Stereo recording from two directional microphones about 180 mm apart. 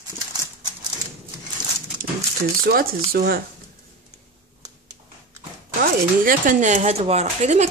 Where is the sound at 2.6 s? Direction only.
55° right (ahead or behind).